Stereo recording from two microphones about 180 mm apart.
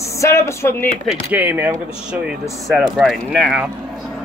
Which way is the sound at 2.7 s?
Centre (ahead or behind).